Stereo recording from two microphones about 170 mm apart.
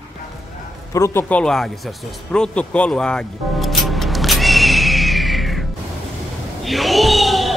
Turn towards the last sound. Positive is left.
turn(degrees=0)  # may be behind; listen again after turning